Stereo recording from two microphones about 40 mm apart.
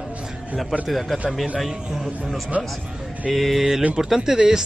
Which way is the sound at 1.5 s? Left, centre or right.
Centre.